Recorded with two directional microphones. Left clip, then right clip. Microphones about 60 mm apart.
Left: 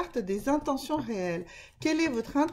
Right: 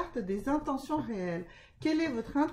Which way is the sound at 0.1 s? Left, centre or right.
Left.